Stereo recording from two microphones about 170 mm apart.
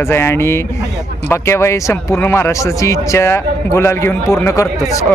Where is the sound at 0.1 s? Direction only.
15° left (ahead or behind).